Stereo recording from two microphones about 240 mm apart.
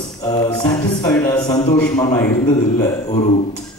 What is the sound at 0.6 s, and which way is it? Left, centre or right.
A man's voice, centre.